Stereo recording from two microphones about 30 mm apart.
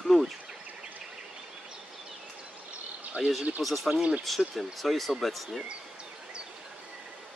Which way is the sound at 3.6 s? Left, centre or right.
Centre.